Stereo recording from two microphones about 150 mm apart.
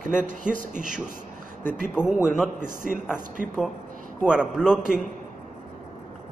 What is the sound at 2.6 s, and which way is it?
Speech, 75° left (ahead or behind).